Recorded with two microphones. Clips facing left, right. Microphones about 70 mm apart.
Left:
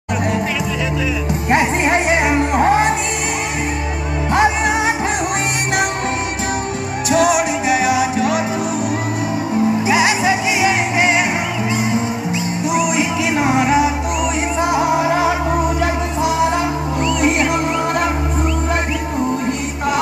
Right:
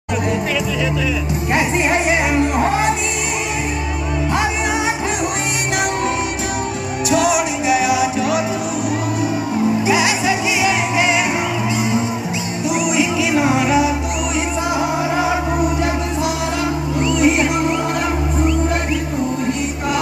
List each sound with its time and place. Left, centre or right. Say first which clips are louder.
1.5 s music: left 2 dB; left
4.3 s music: left 5 dB; left
7.1 s music: left 2 dB; left
9.8 s music: left 1 dB; left
13.4 s music: left 1 dB; left